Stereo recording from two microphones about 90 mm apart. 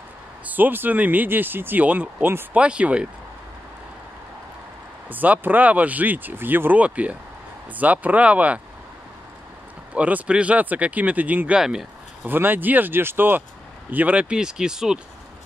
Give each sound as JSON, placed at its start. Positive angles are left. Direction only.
{"t": 0.5, "sound": "speech", "side_deg": -20}
{"t": 5.1, "sound": "speech", "side_deg": -20}
{"t": 9.9, "sound": "speech", "side_deg": -15}
{"t": 11.6, "sound": "speech", "side_deg": -5}
{"t": 12.2, "sound": "speech", "side_deg": -25}